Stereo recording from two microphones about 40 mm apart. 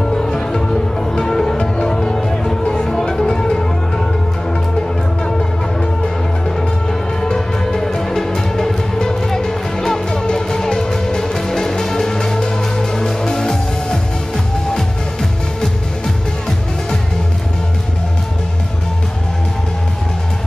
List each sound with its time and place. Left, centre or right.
0.0 s music: centre
6.0 s music: centre